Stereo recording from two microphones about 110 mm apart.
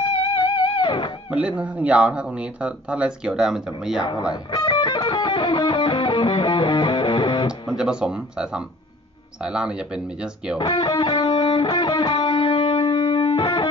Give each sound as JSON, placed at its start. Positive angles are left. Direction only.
{"t": 0.0, "sound": "music", "side_deg": 45}
{"t": 1.3, "sound": "speech", "side_deg": -10}
{"t": 4.6, "sound": "music", "side_deg": 45}
{"t": 7.7, "sound": "speech", "side_deg": -5}
{"t": 10.6, "sound": "music", "side_deg": 50}